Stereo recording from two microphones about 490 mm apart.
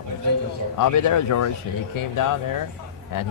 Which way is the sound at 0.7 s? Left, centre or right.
Left.